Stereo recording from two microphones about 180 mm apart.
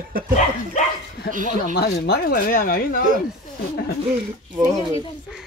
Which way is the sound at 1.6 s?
55° left (ahead or behind).